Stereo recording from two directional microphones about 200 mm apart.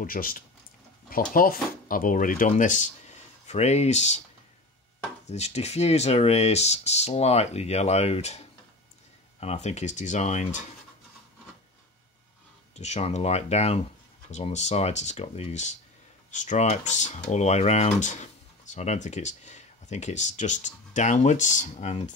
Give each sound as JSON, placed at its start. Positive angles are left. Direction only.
{"t": 0.0, "sound": "speech", "side_deg": 45}
{"t": 5.2, "sound": "speech", "side_deg": 35}
{"t": 9.4, "sound": "speech", "side_deg": 30}
{"t": 12.7, "sound": "speech", "side_deg": 35}